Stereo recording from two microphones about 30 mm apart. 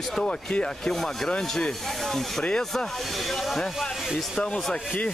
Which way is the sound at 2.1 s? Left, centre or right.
Centre.